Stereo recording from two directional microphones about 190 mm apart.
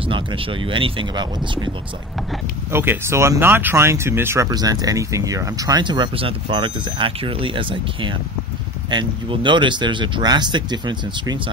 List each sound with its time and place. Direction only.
0.0 s speech: 25° right (ahead or behind)
2.7 s speech: 10° right (ahead or behind)